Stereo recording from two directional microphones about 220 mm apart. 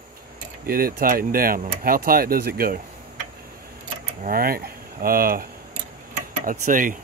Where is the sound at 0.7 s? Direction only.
40° right (ahead or behind).